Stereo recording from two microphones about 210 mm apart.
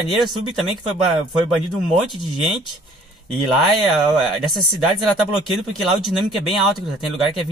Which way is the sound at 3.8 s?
Centre (ahead or behind).